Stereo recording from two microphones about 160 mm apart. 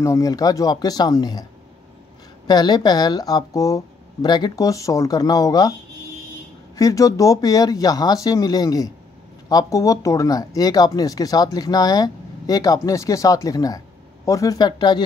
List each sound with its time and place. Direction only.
0.0 s speech: 20° left (ahead or behind)
2.4 s speech: 25° left (ahead or behind)
6.8 s speech: 20° left (ahead or behind)